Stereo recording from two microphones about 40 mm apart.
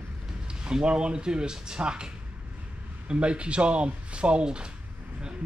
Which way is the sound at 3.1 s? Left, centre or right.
Right.